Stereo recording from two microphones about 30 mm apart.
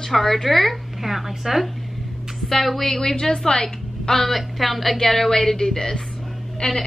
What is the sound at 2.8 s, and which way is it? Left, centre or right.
A woman's voice, centre.